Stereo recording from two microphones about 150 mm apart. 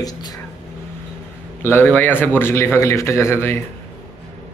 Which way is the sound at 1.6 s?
15° left (ahead or behind).